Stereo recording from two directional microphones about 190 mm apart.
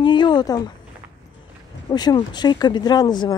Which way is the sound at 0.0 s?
25° left (ahead or behind).